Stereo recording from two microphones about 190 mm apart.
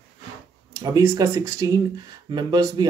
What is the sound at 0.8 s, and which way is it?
Speech, 20° right (ahead or behind).